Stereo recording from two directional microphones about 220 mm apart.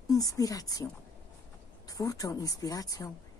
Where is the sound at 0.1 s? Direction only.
15° left (ahead or behind).